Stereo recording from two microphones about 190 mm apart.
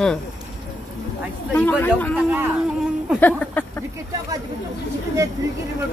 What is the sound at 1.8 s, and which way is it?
Speech, 10° left (ahead or behind).